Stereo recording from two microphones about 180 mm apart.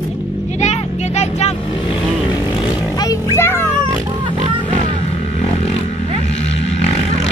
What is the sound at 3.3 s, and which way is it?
Music, 15° left (ahead or behind).